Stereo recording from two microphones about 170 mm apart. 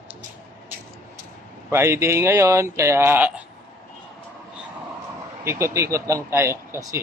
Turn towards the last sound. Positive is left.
turn(degrees=-15)  # may be behind; listen again after turning